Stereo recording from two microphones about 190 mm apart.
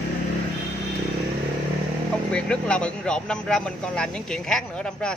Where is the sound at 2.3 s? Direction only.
5° left (ahead or behind).